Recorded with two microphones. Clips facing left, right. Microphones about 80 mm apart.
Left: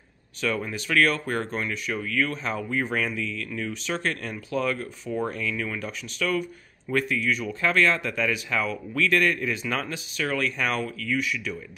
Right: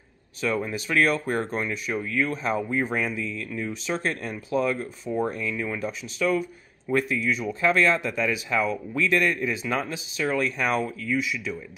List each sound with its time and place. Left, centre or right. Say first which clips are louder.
0.4 s speech: right 1 dB; right